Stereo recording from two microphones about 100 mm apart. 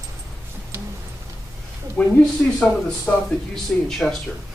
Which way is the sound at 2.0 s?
10° left (ahead or behind).